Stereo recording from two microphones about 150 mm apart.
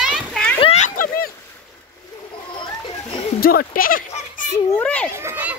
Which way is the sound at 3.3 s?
80° left.